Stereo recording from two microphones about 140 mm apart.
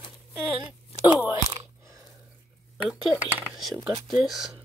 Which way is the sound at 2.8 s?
Centre (ahead or behind).